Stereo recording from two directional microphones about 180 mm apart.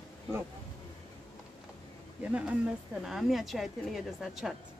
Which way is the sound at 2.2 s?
5° right (ahead or behind).